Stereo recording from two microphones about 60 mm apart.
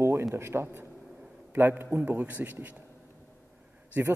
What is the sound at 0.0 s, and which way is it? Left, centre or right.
A man's voice, right.